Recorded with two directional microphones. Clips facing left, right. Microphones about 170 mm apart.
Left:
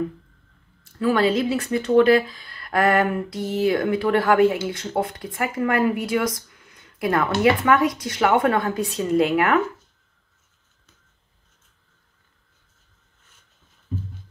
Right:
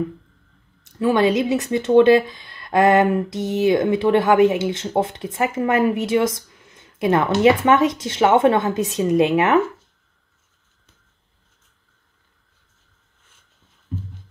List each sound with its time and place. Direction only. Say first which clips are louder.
0.9 s speech: right 2 dB; 20° right (ahead or behind)